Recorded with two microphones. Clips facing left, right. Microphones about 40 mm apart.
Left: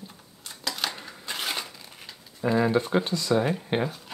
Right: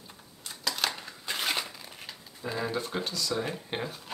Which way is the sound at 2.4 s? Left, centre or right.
Centre.